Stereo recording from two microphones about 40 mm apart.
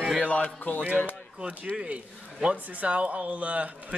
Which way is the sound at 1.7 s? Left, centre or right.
Right.